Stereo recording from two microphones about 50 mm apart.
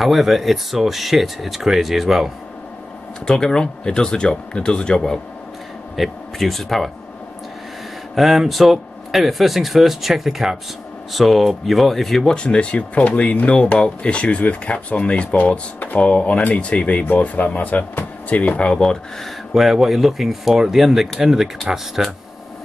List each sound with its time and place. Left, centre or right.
0.0 s speech: centre
3.3 s speech: centre
5.9 s speech: centre
8.1 s speech: centre
12.4 s speech: left
13.6 s speech: centre
18.7 s speech: centre
19.5 s speech: centre